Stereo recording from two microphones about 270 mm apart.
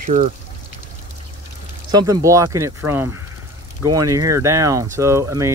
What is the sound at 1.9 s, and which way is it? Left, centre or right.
Speech, centre.